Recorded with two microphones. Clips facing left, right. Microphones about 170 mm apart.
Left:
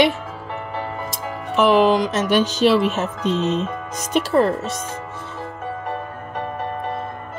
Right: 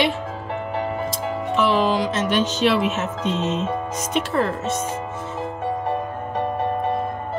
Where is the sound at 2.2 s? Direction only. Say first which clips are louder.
Left 4 dB; 5° left (ahead or behind).